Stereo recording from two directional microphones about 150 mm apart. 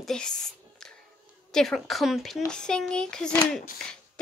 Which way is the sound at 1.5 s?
Centre (ahead or behind).